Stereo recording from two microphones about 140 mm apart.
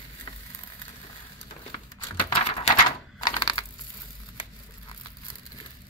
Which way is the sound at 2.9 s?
30° left (ahead or behind).